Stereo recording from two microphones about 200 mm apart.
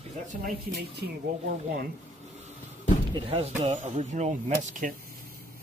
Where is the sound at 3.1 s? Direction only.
30° right (ahead or behind).